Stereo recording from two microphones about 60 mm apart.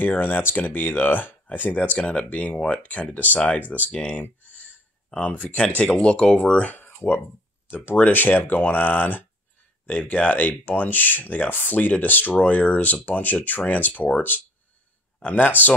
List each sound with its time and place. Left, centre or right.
0.0 s speech: left; by 6.7 s centre
6.7 s speech: left